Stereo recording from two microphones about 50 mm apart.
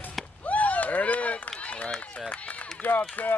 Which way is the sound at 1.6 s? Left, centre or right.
Left.